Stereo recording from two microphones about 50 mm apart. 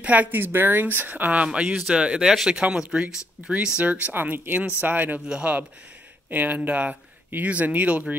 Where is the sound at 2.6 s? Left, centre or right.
Right.